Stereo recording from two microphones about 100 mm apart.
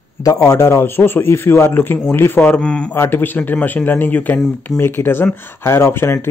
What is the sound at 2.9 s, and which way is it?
A man's voice, 20° left (ahead or behind).